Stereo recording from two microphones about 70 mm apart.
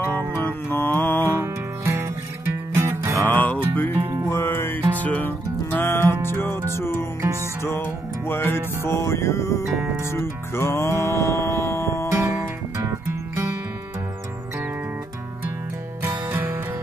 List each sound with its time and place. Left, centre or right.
0.4 s music: left
1.3 s music: right
3.3 s music: left
9.8 s music: right
10.1 s music: left
12.1 s music: right
16.3 s music: right